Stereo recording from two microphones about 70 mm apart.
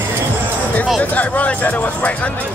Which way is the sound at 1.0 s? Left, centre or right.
Left.